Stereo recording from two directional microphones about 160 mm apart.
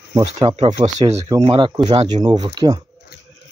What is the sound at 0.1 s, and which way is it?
Speech, 25° right (ahead or behind).